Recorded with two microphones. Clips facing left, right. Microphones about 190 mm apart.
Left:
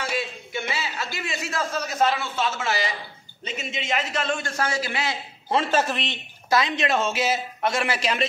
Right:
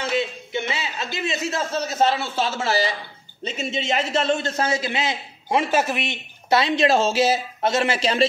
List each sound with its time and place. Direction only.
0.0 s a sound: 20° right (ahead or behind)
3.4 s a man's voice: 30° right (ahead or behind); by 6.1 s 10° right (ahead or behind)
6.5 s speech: 30° right (ahead or behind)